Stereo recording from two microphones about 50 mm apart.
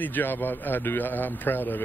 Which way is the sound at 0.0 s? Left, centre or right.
Left.